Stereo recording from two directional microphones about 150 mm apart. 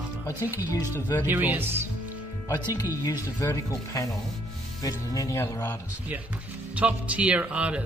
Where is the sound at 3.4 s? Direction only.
20° left (ahead or behind).